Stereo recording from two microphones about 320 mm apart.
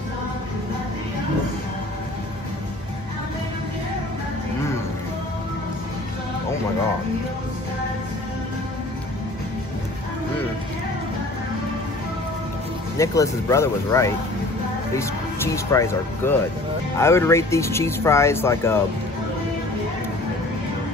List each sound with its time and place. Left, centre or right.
12.9 s speech: centre